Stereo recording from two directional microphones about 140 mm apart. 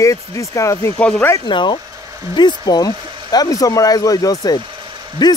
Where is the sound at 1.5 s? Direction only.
35° left (ahead or behind).